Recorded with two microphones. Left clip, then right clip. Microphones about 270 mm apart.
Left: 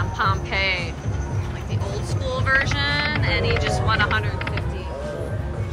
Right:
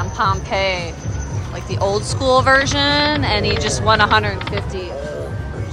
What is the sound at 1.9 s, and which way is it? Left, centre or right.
A woman's voice, centre.